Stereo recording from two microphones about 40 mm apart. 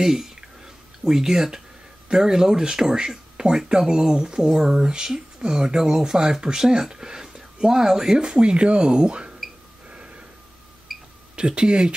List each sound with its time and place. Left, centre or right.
0.0 s a sound: centre
1.0 s speech: centre
8.4 s speech: right
9.8 s a sound: right
10.9 s cash register: centre
11.3 s speech: right